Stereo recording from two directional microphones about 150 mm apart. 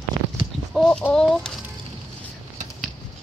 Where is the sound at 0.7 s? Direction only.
5° left (ahead or behind).